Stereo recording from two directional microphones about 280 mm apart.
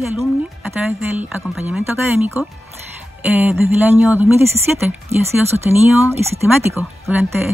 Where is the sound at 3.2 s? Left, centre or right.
Centre.